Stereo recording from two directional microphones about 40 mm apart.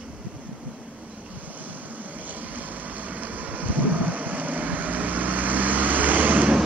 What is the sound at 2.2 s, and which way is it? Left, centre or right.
Vehicle, right.